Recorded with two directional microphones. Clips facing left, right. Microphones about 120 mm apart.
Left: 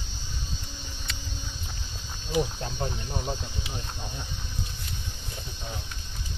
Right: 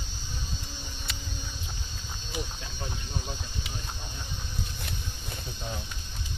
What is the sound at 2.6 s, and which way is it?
Speech, 40° left (ahead or behind).